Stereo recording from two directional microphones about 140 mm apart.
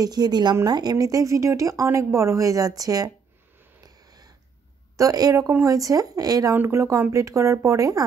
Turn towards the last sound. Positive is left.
turn(degrees=-25)  # may be behind; listen again after turning